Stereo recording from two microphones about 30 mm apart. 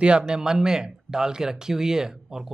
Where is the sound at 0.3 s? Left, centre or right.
Right.